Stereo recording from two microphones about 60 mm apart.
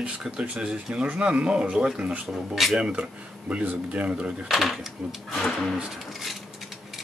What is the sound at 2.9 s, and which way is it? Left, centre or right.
Speech, centre.